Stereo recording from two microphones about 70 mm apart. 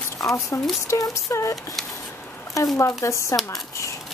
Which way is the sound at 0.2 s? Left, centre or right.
Left.